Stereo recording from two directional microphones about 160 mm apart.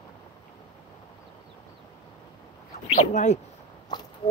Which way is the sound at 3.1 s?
45° left (ahead or behind).